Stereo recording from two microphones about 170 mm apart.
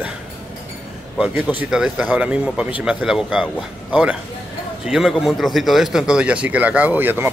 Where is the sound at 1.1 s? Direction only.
5° right (ahead or behind).